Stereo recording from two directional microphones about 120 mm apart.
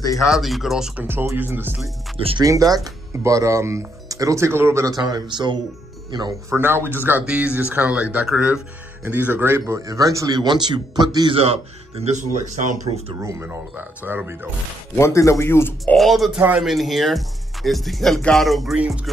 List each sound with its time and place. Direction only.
0.1 s speech: centre (ahead or behind)
1.0 s speech: 20° right (ahead or behind)
2.1 s speech: 50° right (ahead or behind)
2.4 s speech: 30° right (ahead or behind)
6.5 s speech: 20° right (ahead or behind); by 11.3 s 35° right (ahead or behind)
11.3 s speech: 55° right (ahead or behind); by 13.0 s 90° right
13.2 s speech: 20° right (ahead or behind)
15.0 s speech: 25° left (ahead or behind)
16.0 s speech: centre (ahead or behind)
16.3 s speech: 15° right (ahead or behind)
16.6 s speech: centre (ahead or behind)